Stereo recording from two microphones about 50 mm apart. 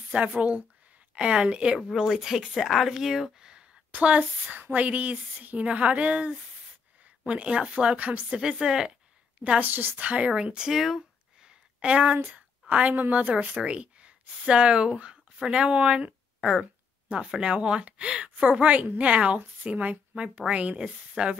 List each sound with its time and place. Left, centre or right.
0.1 s speech: right
2.0 s speech: centre
3.9 s speech: right
8.4 s speech: centre
9.6 s a woman's voice: right
10.0 s speech: right
11.4 s a sound: right
12.3 s a woman's voice: right
16.3 s a sound: centre
17.1 s speech: right